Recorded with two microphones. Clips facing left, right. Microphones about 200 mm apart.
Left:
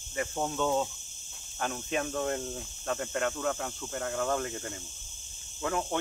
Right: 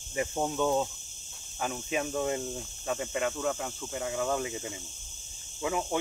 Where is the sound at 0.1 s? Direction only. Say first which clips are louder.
Right 2 dB; 10° right (ahead or behind).